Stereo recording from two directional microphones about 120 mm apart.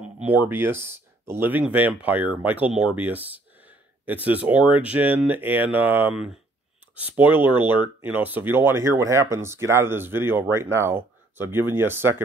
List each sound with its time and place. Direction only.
0.2 s speech: 15° right (ahead or behind)